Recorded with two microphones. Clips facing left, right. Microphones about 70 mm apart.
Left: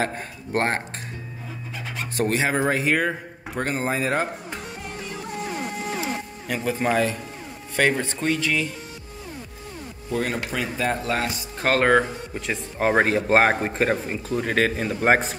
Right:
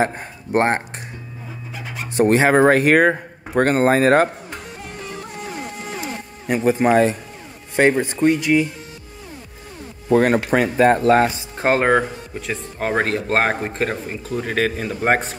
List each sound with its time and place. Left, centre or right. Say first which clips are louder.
0.0 s a man's voice: right 5 dB; centre
1.7 s a sound: right 1 dB; centre
2.3 s speech: right 10 dB; right
6.4 s a man's voice: right 8 dB; right
7.9 s speech: right 7 dB; centre
10.0 s speech: right 10 dB; right
11.3 s speech: right 3 dB; right
11.9 s a man's voice: right 1 dB; centre